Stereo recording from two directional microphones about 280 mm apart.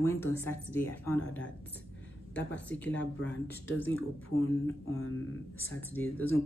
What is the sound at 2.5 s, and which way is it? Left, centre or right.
Speech, centre.